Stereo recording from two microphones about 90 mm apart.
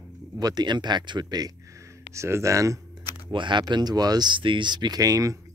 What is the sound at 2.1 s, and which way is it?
Speech, 30° right (ahead or behind).